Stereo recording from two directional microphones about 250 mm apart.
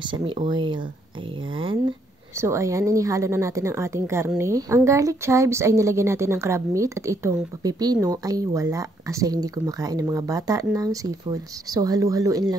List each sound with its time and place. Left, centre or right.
0.0 s speech: centre